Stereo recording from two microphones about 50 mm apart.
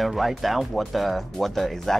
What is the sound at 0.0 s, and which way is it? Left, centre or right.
Speech, centre.